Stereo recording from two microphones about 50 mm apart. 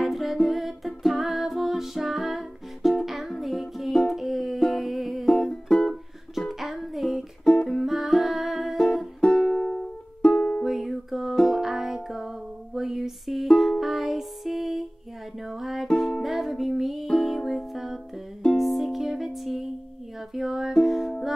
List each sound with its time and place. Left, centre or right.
0.0 s music: centre
5.5 s music: centre
6.4 s music: centre
7.4 s music: centre
8.7 s music: centre
10.6 s music: centre
11.3 s music: centre
11.6 s music: centre